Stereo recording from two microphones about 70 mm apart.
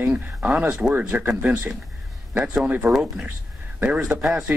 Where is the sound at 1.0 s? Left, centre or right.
Right.